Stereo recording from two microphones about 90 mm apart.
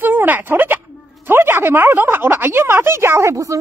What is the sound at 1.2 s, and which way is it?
Speech, 25° right (ahead or behind).